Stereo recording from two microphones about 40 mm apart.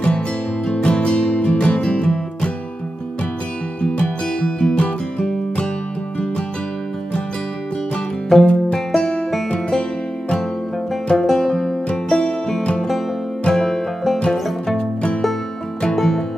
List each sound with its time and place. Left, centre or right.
0.7 s music: left
3.8 s music: left
8.3 s music: centre
8.7 s music: centre
11.2 s music: centre
11.9 s music: left
12.7 s music: centre
16.0 s music: centre